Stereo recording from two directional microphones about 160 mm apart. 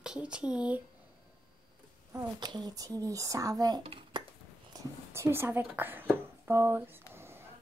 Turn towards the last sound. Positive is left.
turn(degrees=-15)  # may be behind; listen again after turning